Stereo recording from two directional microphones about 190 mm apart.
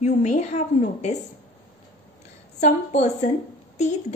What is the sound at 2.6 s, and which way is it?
Speech, 35° left (ahead or behind).